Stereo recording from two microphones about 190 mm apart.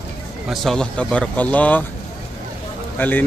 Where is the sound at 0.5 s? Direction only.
Centre (ahead or behind).